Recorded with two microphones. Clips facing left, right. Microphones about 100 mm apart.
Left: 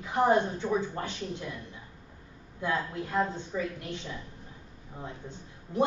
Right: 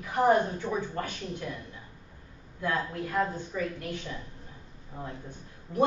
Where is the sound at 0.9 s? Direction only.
25° left (ahead or behind).